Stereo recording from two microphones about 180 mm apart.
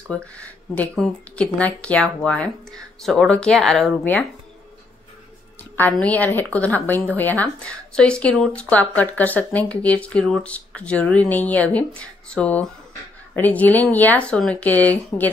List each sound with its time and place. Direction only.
0.1 s speech: 5° left (ahead or behind)
5.6 s a woman's voice: 10° left (ahead or behind)